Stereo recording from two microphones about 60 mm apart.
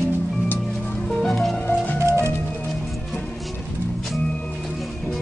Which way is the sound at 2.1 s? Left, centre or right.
Right.